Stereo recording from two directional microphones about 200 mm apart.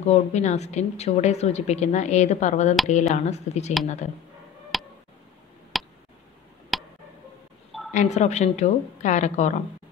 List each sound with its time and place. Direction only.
0.0 s a woman's voice: 35° left (ahead or behind)
4.7 s tick: centre (ahead or behind)
5.7 s a sound: centre (ahead or behind)
6.7 s tick: centre (ahead or behind)
7.9 s a woman's voice: 35° left (ahead or behind)